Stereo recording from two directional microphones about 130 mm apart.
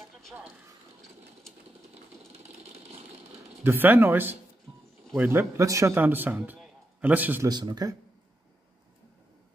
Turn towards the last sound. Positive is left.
turn(degrees=-30)  # may be behind; listen again after turning